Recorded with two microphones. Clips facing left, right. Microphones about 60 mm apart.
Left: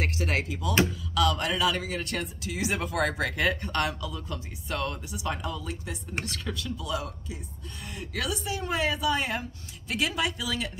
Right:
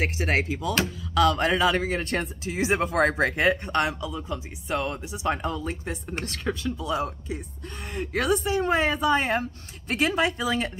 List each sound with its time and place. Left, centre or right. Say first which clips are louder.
0.0 s a man's voice: right 4 dB; right